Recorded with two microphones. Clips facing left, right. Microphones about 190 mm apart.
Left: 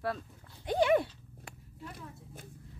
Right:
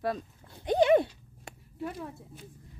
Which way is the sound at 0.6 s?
20° right (ahead or behind).